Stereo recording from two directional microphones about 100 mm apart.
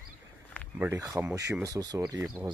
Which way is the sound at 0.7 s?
20° right (ahead or behind).